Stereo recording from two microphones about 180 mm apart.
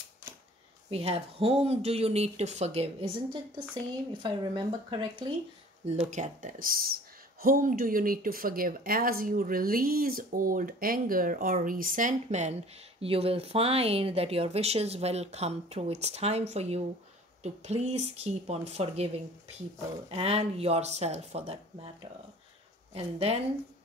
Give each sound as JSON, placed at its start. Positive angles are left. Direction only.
{"t": 0.8, "sound": "speech", "side_deg": -30}
{"t": 6.0, "sound": "speech", "side_deg": -45}
{"t": 20.1, "sound": "speech", "side_deg": -35}
{"t": 22.9, "sound": "speech", "side_deg": -35}